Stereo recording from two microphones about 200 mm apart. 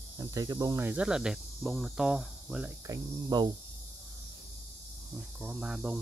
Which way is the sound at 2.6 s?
15° right (ahead or behind).